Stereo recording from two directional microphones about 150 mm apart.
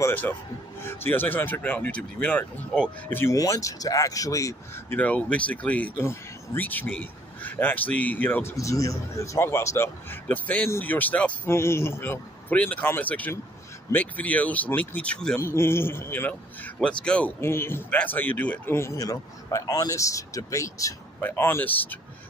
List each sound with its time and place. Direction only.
0.0 s speech: 10° left (ahead or behind)
4.9 s speech: 10° left (ahead or behind)
15.3 s speech: 15° left (ahead or behind)